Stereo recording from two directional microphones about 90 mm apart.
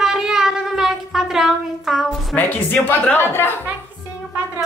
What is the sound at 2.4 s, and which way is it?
Speech, 20° left (ahead or behind).